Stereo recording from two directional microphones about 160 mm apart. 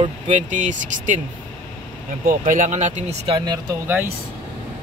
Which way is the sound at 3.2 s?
25° right (ahead or behind).